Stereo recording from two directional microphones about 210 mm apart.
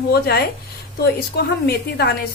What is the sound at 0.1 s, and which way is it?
A woman's voice, 50° left (ahead or behind).